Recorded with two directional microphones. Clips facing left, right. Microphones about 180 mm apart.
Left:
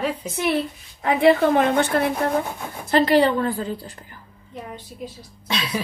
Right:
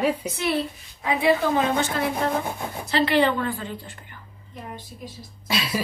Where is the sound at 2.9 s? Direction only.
45° left (ahead or behind).